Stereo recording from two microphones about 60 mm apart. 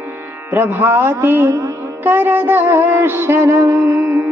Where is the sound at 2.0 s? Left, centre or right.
Right.